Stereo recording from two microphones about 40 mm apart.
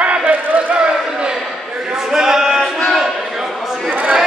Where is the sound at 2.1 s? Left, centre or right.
Centre.